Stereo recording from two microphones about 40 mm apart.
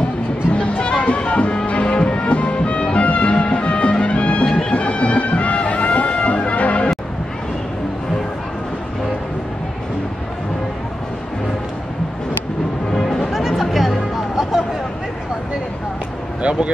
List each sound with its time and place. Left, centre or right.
0.5 s music: left
4.5 s music: centre
4.7 s music: left
13.2 s music: centre
16.4 s a sound: right